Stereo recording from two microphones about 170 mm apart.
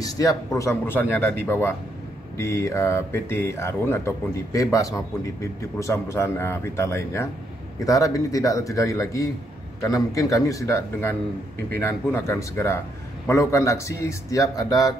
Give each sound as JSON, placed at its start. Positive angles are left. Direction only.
{"t": 0.0, "sound": "speech", "side_deg": 20}
{"t": 2.3, "sound": "speech", "side_deg": 15}